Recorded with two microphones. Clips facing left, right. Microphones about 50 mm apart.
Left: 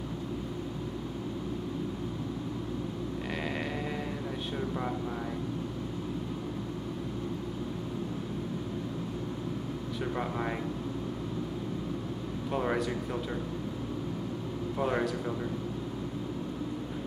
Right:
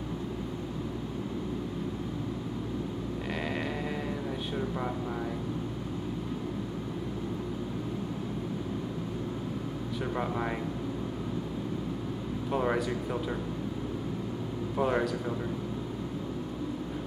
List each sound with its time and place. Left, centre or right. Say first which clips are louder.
4.6 s speech: even; centre
12.4 s speech: right 1 dB; centre
14.8 s speech: right 2 dB; centre